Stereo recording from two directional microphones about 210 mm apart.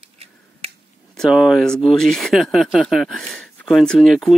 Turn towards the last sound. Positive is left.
turn(degrees=0)  # may be behind; listen again after turning